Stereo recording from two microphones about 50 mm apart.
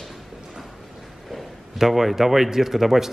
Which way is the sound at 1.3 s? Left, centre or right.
Centre.